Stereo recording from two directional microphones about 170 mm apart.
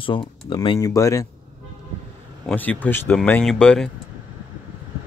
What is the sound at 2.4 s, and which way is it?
Speech, 10° left (ahead or behind).